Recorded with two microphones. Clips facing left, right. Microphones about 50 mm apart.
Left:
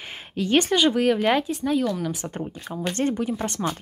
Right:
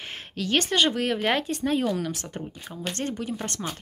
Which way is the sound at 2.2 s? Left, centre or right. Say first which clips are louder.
Left 5 dB; left.